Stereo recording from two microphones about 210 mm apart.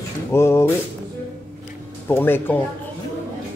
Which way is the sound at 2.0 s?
10° left (ahead or behind).